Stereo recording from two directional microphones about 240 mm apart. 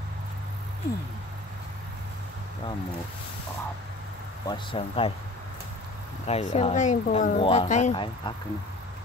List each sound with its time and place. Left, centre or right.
4.5 s speech: left
6.2 s speech: left